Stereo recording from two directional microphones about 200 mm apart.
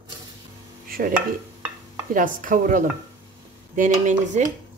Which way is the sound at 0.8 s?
45° right (ahead or behind).